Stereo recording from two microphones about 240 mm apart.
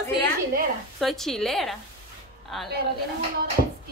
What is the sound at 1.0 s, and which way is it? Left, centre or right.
A woman's voice, centre.